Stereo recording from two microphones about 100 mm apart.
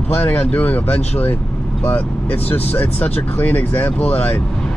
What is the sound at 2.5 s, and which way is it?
Speech, 20° left (ahead or behind).